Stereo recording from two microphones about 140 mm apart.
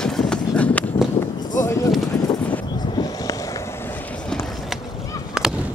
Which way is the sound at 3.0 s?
25° left (ahead or behind).